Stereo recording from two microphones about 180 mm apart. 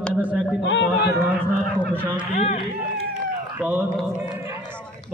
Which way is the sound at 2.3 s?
35° left (ahead or behind).